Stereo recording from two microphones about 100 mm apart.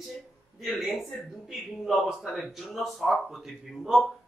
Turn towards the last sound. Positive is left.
turn(degrees=0)  # may be behind; listen again after turning